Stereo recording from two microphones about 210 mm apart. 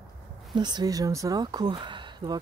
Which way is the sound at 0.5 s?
20° right (ahead or behind).